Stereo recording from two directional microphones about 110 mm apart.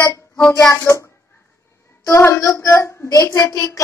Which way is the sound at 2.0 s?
25° left (ahead or behind).